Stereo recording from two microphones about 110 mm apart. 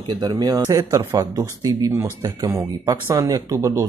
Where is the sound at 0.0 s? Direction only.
45° right (ahead or behind).